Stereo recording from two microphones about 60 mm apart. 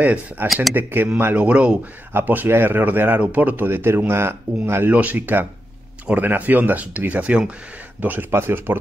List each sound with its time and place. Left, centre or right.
0.4 s speech: right
2.1 s speech: right
4.9 s speech: right
8.0 s speech: right